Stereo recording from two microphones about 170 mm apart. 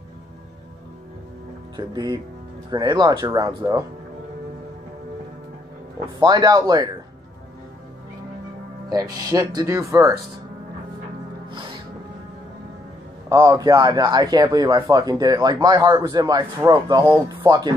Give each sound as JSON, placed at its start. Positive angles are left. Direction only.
{"t": 1.8, "sound": "a man's voice", "side_deg": -25}
{"t": 6.1, "sound": "a man's voice", "side_deg": -25}
{"t": 8.8, "sound": "a man's voice", "side_deg": -20}
{"t": 13.3, "sound": "a man's voice", "side_deg": -20}